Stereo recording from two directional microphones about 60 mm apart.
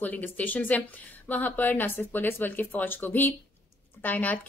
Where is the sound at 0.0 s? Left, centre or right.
Left.